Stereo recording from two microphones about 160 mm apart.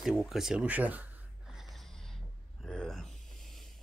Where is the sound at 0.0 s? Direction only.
5° right (ahead or behind).